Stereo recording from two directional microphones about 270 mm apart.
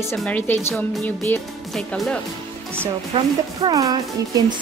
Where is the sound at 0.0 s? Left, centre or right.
Centre.